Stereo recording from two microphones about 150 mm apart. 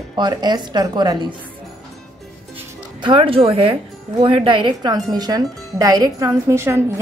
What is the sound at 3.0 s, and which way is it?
A woman's voice, 35° right (ahead or behind).